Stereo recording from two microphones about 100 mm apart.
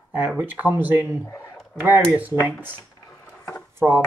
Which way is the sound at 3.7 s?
20° right (ahead or behind).